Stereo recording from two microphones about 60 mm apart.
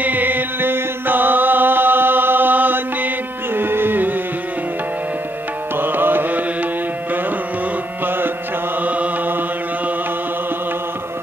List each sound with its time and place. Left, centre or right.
0.0 s chant: right
3.5 s music: right
5.8 s carnatic music: right
8.0 s carnatic music: right
8.8 s chant: right